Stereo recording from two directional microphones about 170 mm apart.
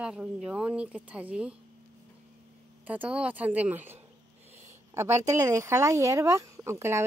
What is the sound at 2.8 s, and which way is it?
Speech, 10° right (ahead or behind).